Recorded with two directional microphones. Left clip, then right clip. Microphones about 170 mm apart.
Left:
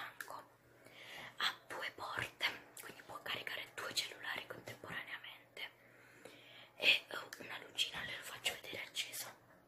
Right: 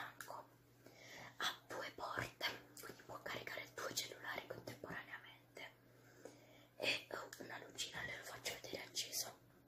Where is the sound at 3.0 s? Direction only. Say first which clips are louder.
Left 5 dB; centre (ahead or behind).